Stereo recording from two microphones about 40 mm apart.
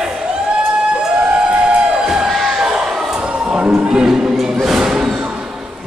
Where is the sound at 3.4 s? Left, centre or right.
Right.